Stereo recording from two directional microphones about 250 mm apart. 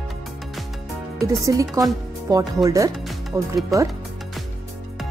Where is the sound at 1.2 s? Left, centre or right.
Centre.